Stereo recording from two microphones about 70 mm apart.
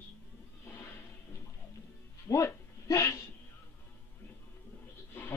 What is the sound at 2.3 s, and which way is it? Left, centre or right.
Speech, left.